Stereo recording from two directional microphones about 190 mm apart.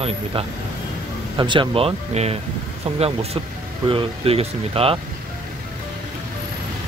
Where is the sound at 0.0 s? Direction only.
30° right (ahead or behind).